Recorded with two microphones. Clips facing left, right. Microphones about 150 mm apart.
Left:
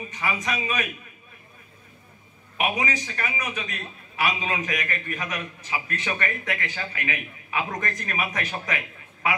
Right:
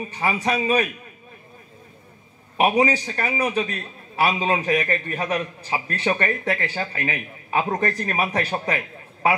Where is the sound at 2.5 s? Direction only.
35° right (ahead or behind).